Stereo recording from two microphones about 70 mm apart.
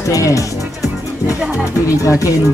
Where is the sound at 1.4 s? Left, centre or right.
Centre.